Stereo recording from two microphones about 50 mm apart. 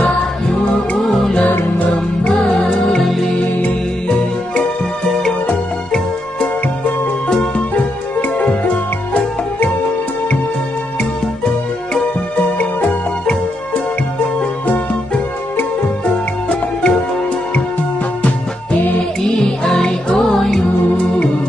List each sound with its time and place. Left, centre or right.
0.5 s music: centre
3.0 s music: centre
7.2 s music: centre
7.7 s music: left
12.5 s music: left
16.1 s music: centre
19.2 s music: centre